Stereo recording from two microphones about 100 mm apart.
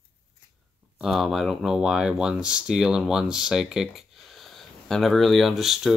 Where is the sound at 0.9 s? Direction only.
Centre (ahead or behind).